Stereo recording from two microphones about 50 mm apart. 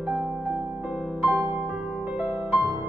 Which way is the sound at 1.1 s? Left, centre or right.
Right.